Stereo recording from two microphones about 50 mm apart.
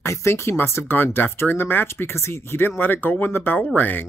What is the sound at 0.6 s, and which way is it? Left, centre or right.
Speech, left.